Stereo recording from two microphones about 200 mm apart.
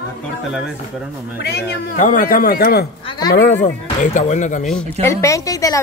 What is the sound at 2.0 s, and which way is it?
Speech, 40° left (ahead or behind).